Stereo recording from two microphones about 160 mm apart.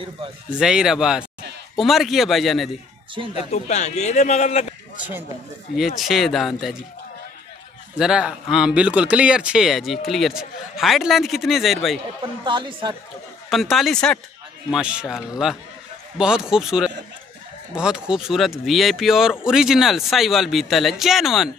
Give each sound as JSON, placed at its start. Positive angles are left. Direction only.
{"t": 0.5, "sound": "speech", "side_deg": -5}
{"t": 3.3, "sound": "a man's voice", "side_deg": 45}
{"t": 5.9, "sound": "speech", "side_deg": 0}
{"t": 8.0, "sound": "speech", "side_deg": -5}
{"t": 12.4, "sound": "speech", "side_deg": -30}
{"t": 13.5, "sound": "speech", "side_deg": 0}
{"t": 14.7, "sound": "speech", "side_deg": -5}